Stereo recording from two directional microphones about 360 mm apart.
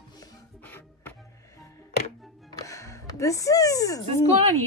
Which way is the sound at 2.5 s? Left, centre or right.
Centre.